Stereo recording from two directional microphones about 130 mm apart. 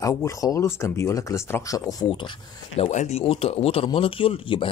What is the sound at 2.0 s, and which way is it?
Speech, 40° left (ahead or behind).